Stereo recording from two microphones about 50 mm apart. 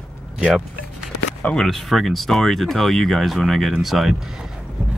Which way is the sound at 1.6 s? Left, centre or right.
Centre.